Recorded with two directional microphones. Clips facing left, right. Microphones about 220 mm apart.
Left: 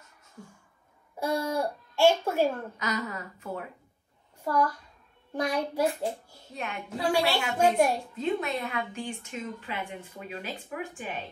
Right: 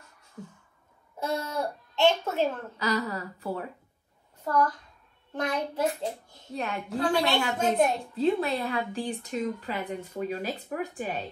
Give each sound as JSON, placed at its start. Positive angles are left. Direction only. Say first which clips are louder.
{"t": 1.2, "sound": "a child's voice", "louder": "left 2 dB", "side_deg": 10}
{"t": 2.8, "sound": "a woman's voice", "louder": "right 7 dB", "side_deg": -35}
{"t": 4.5, "sound": "a child's voice", "louder": "right 1 dB", "side_deg": 10}
{"t": 8.2, "sound": "a woman's voice", "louder": "right 6 dB", "side_deg": -35}